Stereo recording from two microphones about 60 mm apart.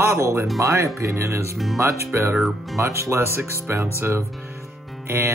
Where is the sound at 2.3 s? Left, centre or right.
Centre.